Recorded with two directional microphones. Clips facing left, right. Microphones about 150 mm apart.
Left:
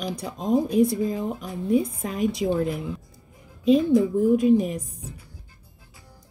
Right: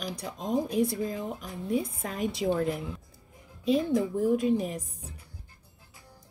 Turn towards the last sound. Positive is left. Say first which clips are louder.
# left 5 dB
turn(degrees=15)  # may be behind; listen again after turning